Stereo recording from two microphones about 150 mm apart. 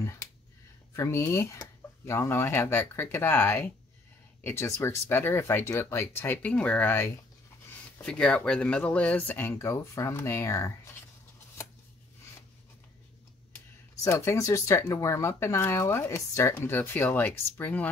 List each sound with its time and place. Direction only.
0.0 s a sound: 20° left (ahead or behind)
0.9 s speech: 20° left (ahead or behind)
14.0 s speech: 20° left (ahead or behind)